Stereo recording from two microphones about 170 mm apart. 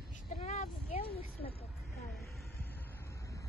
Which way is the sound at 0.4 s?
40° left (ahead or behind).